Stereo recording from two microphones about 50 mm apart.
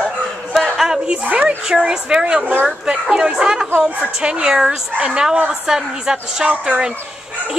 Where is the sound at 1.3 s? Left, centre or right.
Right.